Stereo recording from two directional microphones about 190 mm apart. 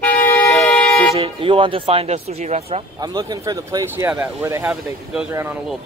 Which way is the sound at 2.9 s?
20° right (ahead or behind).